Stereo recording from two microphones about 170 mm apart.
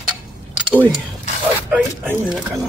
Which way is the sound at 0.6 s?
10° right (ahead or behind).